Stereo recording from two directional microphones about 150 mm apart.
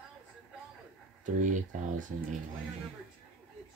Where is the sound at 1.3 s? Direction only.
55° right (ahead or behind).